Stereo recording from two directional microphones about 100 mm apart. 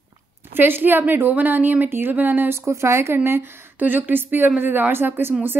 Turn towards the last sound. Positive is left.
turn(degrees=-20)  # may be behind; listen again after turning